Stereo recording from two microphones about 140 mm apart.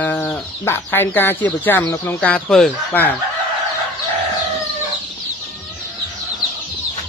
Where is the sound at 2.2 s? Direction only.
5° left (ahead or behind).